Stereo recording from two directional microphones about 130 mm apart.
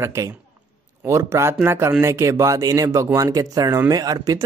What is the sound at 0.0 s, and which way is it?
Speech, 20° right (ahead or behind).